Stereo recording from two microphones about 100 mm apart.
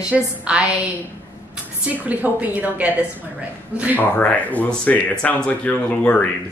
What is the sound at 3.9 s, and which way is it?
Speech, 15° left (ahead or behind).